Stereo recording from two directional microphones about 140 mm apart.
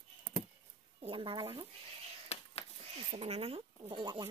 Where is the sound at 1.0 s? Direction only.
40° right (ahead or behind).